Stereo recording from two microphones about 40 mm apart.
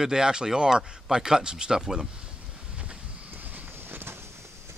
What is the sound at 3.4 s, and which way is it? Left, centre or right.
Vehicle, right.